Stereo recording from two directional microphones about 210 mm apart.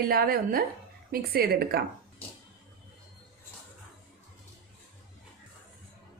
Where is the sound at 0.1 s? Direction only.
45° right (ahead or behind).